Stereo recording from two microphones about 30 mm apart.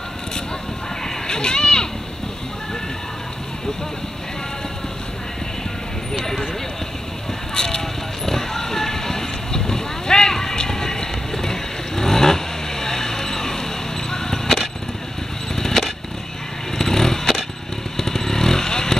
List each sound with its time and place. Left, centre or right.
1.0 s a sound: left
6.1 s vehicle: centre
7.5 s vehicle: left
8.3 s clip-clop: centre
14.1 s a sound: centre
16.7 s vehicle: centre
17.9 s motorcycle: centre